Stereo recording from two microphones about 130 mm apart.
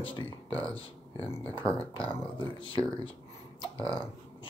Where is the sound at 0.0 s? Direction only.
40° left (ahead or behind).